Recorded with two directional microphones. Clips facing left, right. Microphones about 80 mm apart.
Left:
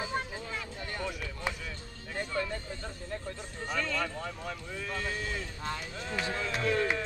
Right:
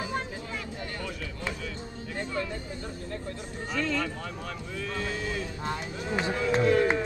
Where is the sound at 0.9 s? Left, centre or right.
Left.